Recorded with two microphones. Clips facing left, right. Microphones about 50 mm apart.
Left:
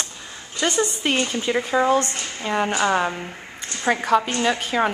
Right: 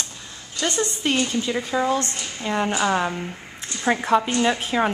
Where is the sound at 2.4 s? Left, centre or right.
Centre.